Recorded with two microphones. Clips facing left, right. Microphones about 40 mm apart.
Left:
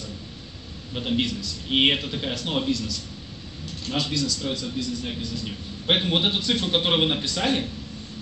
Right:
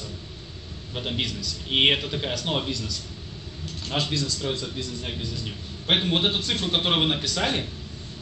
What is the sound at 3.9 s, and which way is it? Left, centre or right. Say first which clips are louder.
A man's voice: left 1 dB; right.